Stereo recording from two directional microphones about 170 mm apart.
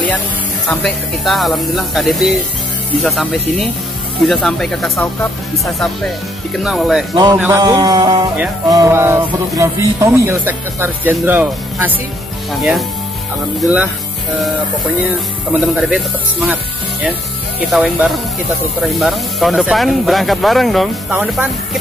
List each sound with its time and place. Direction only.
0.7 s speech: centre (ahead or behind)
7.3 s speech: 10° right (ahead or behind)
7.6 s music: 20° right (ahead or behind)
8.6 s speech: 20° right (ahead or behind)
12.5 s speech: centre (ahead or behind)
15.6 s speech: centre (ahead or behind)
17.6 s speech: 5° right (ahead or behind)